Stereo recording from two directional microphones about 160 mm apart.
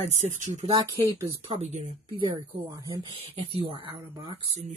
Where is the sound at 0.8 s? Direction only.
20° right (ahead or behind).